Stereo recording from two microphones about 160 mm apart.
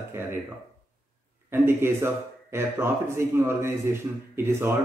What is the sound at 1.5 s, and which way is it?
Speech, 15° right (ahead or behind).